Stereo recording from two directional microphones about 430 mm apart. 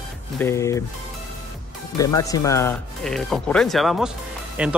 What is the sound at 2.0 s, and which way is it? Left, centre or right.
Speech, centre.